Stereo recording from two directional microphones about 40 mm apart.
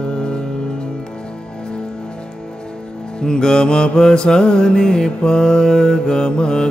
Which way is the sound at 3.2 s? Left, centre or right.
Centre.